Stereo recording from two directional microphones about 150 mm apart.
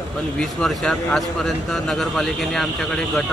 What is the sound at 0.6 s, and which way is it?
Speech, 5° left (ahead or behind).